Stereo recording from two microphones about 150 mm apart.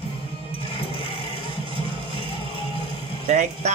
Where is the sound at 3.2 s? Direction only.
50° right (ahead or behind).